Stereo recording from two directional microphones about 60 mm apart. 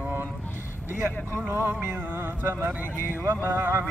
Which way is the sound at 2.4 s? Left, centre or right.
Right.